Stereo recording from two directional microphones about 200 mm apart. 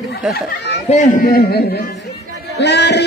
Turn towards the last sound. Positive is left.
turn(degrees=60)  # may be behind; listen again after turning